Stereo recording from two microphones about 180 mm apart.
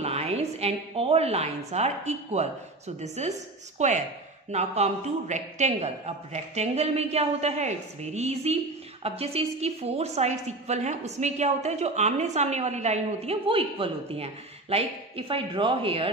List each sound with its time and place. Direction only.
0.0 s a woman's voice: 35° right (ahead or behind)